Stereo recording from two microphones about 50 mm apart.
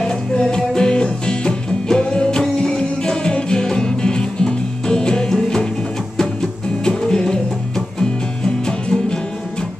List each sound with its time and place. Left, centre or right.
0.0 s music: centre
6.8 s music: centre